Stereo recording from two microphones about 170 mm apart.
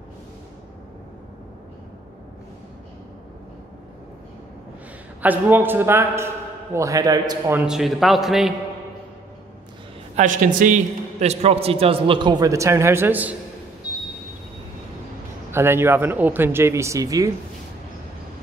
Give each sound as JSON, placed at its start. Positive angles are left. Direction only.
{"t": 5.2, "sound": "a man's voice", "side_deg": -10}
{"t": 7.6, "sound": "a man's voice", "side_deg": 0}
{"t": 10.1, "sound": "a man's voice", "side_deg": -50}
{"t": 15.5, "sound": "a man's voice", "side_deg": -15}